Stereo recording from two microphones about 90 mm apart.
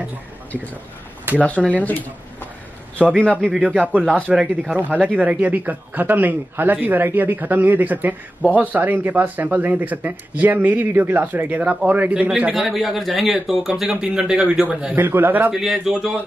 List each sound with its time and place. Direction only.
1.4 s speech: 15° left (ahead or behind)
3.2 s speech: 10° left (ahead or behind)
3.5 s speech: 15° right (ahead or behind)
15.0 s speech: 20° right (ahead or behind)
15.5 s speech: 5° right (ahead or behind)